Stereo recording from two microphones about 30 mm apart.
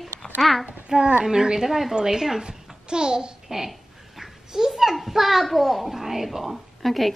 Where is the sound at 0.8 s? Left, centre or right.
Right.